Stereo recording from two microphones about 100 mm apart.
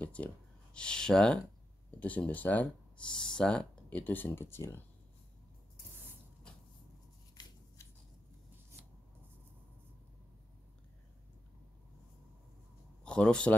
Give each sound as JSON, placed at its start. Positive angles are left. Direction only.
{"t": 0.0, "sound": "speech", "side_deg": 15}
{"t": 13.0, "sound": "speech", "side_deg": 10}